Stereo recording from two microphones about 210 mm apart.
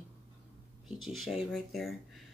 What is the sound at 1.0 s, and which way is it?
Speech, centre (ahead or behind).